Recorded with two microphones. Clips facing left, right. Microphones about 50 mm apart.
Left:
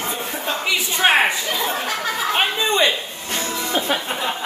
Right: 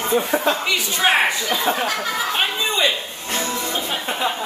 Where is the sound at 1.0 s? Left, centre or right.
Left.